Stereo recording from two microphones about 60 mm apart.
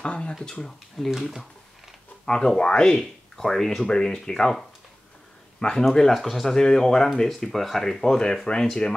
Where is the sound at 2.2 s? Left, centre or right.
Centre.